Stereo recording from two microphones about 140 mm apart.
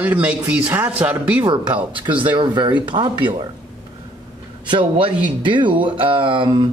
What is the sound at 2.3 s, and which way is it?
Speech, 35° right (ahead or behind).